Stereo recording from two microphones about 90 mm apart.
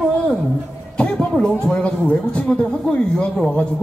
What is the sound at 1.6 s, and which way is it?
A woman's voice, 10° left (ahead or behind).